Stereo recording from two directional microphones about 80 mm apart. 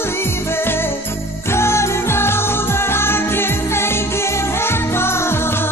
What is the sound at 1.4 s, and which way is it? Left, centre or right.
Music, left.